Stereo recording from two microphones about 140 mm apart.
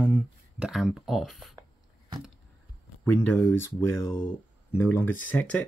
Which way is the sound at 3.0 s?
15° left (ahead or behind).